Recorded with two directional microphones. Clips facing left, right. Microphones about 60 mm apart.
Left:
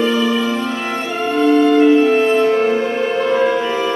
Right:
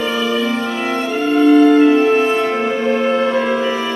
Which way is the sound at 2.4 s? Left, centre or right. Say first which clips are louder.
Left 4 dB; centre.